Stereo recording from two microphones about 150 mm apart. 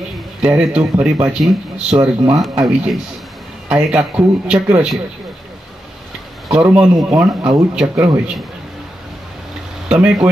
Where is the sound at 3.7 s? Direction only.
10° right (ahead or behind).